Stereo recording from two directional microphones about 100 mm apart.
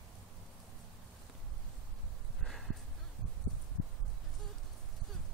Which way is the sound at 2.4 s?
Centre (ahead or behind).